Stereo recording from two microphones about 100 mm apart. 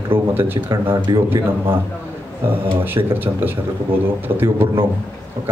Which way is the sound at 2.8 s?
20° right (ahead or behind).